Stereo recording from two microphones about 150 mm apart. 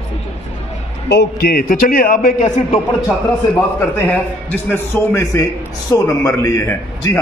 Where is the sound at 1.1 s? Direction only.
85° left; by 2.8 s 55° left (ahead or behind).